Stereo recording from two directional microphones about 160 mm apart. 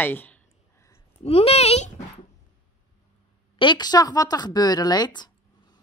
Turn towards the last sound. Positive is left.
turn(degrees=25)  # may be behind; listen again after turning